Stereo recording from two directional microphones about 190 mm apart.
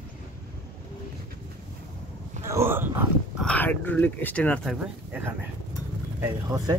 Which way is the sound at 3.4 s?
5° left (ahead or behind).